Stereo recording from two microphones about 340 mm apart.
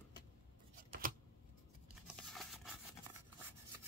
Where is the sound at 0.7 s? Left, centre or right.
Right.